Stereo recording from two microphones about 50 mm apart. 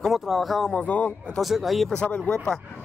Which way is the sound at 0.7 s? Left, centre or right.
Left.